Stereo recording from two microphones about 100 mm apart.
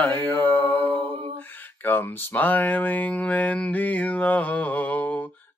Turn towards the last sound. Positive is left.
turn(degrees=15)  # may be behind; listen again after turning